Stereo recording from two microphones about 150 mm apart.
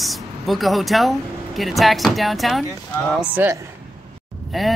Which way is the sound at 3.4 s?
15° right (ahead or behind).